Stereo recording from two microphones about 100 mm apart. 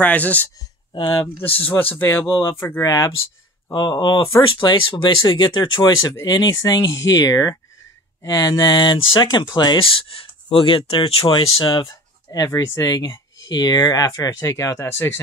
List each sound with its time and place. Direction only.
0.0 s speech: 15° left (ahead or behind)
0.9 s speech: 55° left (ahead or behind)
1.4 s speech: 20° left (ahead or behind)
3.7 s speech: 45° left (ahead or behind)
11.7 s a sound: 35° left (ahead or behind)
12.4 s speech: 30° left (ahead or behind)